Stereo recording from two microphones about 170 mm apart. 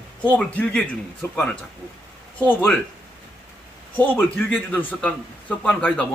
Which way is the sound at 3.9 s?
10° left (ahead or behind).